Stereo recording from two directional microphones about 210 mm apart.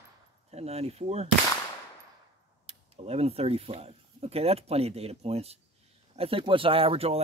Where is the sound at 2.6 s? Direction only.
30° right (ahead or behind).